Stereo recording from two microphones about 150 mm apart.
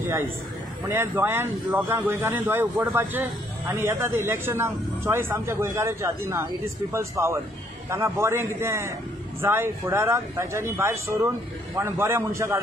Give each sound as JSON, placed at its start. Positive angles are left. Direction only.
{"t": 0.0, "sound": "a man's voice", "side_deg": -15}